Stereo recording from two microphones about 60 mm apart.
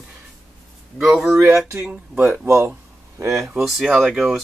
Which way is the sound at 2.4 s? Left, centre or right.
Right.